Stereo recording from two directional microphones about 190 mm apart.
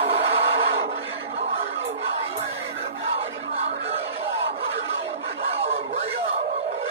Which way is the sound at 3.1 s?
30° right (ahead or behind).